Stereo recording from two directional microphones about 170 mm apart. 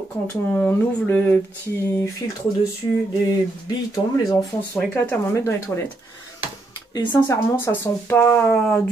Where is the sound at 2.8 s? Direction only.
25° left (ahead or behind).